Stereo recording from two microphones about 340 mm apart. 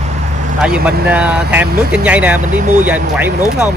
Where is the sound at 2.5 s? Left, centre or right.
Right.